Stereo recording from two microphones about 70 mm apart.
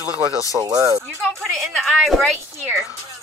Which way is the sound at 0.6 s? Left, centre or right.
Right.